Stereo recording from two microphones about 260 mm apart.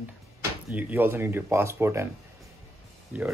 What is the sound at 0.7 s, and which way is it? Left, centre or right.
Speech, centre.